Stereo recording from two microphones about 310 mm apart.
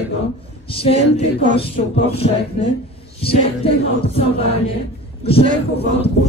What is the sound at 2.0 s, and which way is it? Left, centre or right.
Music, centre.